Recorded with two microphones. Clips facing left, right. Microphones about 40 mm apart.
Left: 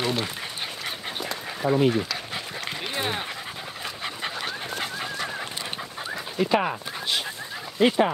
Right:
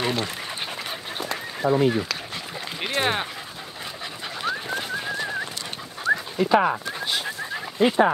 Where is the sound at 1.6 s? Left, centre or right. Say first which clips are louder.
Right 2 dB; right.